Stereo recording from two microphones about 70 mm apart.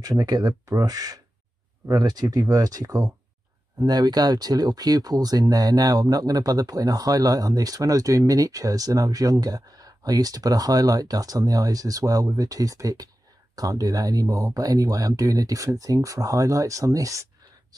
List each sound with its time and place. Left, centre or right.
0.0 s speech: right